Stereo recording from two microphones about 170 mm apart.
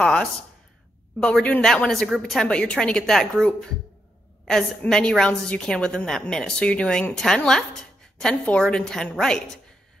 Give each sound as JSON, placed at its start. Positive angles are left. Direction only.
{"t": 0.0, "sound": "a woman's voice", "side_deg": 5}